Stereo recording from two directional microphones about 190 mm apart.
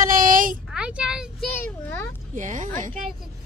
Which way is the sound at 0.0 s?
45° right (ahead or behind).